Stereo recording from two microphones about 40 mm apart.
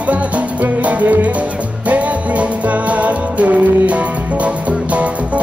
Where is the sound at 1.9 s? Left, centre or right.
Right.